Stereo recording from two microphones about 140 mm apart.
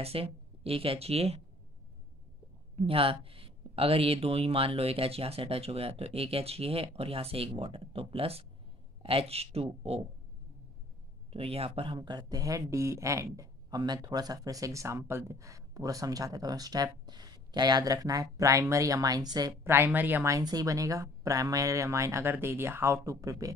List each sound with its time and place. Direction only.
0.0 s speech: 45° right (ahead or behind)
2.7 s speech: 40° right (ahead or behind)
11.3 s speech: 45° right (ahead or behind); by 23.5 s 20° right (ahead or behind)